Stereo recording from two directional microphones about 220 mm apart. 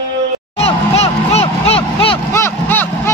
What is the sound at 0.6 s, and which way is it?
Vehicle, 30° left (ahead or behind).